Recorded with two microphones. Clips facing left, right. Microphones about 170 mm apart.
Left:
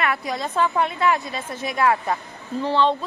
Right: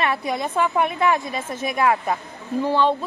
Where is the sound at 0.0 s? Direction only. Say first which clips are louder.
Right 2 dB; 25° right (ahead or behind).